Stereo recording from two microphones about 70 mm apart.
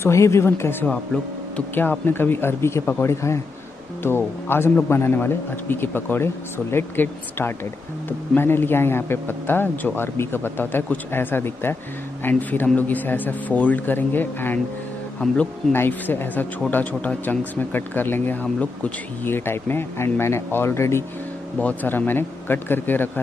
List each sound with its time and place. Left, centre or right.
0.0 s speech: left
15.2 s speech: centre
15.7 s speech: left
19.2 s speech: left
21.5 s speech: left